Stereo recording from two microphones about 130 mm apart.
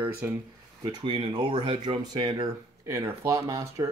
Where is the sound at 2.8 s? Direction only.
20° right (ahead or behind).